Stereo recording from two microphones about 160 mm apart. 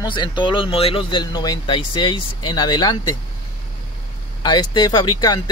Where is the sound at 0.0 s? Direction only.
30° left (ahead or behind).